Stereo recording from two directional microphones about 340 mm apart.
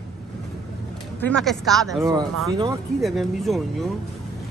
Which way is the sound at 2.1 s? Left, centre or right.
Centre.